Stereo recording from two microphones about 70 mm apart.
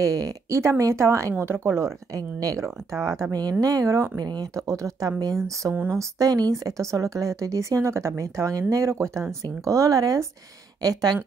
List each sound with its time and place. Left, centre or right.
0.0 s speech: right
2.1 s speech: right
4.2 s speech: right
4.6 s speech: right
10.8 s speech: right